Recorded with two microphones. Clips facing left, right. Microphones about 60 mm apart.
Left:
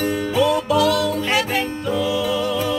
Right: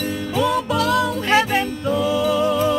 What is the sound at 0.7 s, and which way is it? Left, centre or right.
Music, right.